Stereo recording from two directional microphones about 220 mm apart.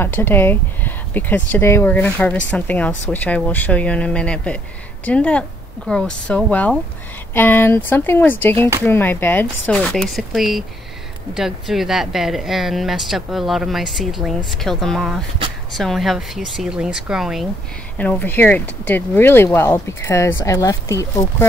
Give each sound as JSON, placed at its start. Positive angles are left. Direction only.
{"t": 0.0, "sound": "speech", "side_deg": 10}